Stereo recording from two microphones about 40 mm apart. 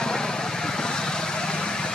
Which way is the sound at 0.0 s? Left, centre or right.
Centre.